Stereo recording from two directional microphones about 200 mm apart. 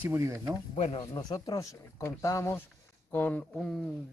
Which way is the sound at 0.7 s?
35° left (ahead or behind).